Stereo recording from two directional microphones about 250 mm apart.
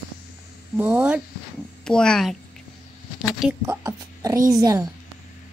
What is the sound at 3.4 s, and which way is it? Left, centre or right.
Speech, centre.